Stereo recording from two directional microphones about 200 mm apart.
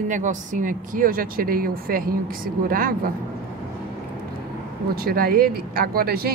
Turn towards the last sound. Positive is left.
turn(degrees=-50)  # may be behind; listen again after turning